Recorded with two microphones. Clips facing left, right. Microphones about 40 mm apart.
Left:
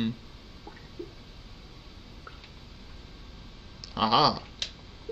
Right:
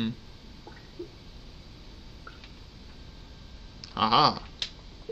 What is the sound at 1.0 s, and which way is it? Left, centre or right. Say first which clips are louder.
Squish: even; left.